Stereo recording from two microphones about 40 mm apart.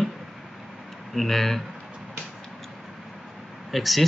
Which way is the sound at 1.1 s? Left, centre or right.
Centre.